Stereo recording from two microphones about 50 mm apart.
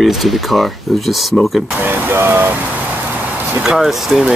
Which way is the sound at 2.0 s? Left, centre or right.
Right.